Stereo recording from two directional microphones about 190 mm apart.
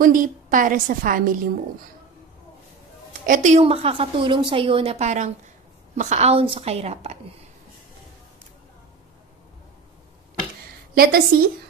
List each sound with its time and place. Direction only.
0.0 s a woman's voice: 45° right (ahead or behind)
3.1 s a woman's voice: 40° right (ahead or behind)
11.0 s a woman's voice: 50° right (ahead or behind)